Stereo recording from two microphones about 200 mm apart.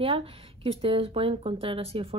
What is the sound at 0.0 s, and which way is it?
Speech, 30° right (ahead or behind).